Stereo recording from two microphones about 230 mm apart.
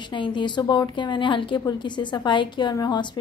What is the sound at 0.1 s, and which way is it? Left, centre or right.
A woman's voice, left.